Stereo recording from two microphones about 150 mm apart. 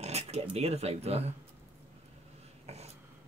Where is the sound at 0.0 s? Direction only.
45° right (ahead or behind).